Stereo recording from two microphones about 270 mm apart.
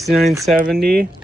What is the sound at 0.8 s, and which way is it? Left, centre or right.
Speech, right.